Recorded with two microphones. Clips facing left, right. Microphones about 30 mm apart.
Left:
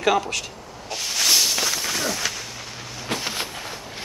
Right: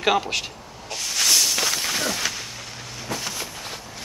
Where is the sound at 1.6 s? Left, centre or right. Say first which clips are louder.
Even; centre.